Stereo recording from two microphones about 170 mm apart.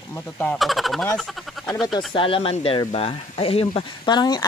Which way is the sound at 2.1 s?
30° left (ahead or behind).